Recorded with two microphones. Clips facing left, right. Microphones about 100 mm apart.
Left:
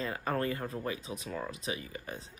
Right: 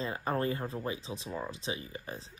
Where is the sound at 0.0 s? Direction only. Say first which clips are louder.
Right 1 dB; 25° right (ahead or behind).